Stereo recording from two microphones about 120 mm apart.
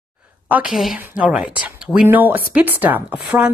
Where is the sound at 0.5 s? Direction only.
10° right (ahead or behind).